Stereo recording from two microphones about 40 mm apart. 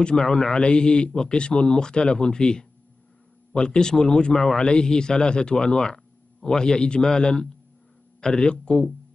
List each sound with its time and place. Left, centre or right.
0.0 s a man's voice: centre